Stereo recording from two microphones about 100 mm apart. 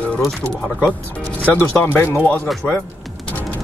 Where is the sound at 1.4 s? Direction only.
20° left (ahead or behind).